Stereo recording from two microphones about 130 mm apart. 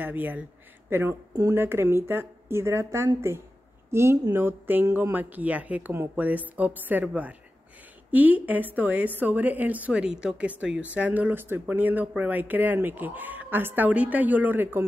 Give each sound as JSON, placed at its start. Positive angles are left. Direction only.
{"t": 0.0, "sound": "speech", "side_deg": -15}
{"t": 1.3, "sound": "speech", "side_deg": -25}
{"t": 1.6, "sound": "a man's voice", "side_deg": -15}